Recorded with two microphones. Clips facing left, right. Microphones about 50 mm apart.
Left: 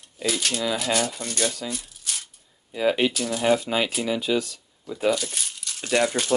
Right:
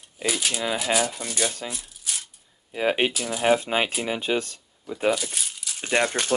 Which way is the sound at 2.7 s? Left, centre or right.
Right.